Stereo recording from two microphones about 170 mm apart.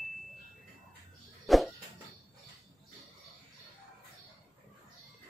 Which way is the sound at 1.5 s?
Centre (ahead or behind).